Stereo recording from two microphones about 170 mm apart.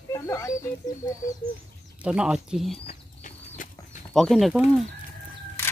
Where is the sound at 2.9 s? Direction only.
45° left (ahead or behind).